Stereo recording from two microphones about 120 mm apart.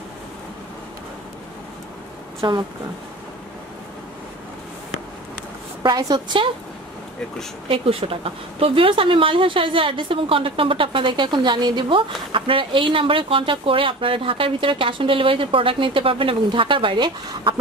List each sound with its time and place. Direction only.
2.4 s a woman's voice: 35° right (ahead or behind)
5.8 s a woman's voice: 35° right (ahead or behind)
7.6 s speech: 50° right (ahead or behind)